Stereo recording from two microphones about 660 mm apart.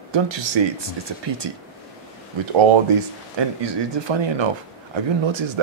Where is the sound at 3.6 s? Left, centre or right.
Right.